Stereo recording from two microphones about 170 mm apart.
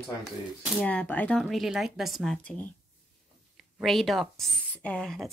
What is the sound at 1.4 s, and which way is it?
Speech, centre (ahead or behind).